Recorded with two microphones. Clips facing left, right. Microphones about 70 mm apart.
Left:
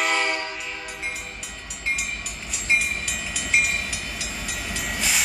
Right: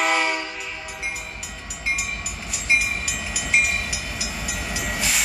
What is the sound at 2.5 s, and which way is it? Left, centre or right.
Train, centre.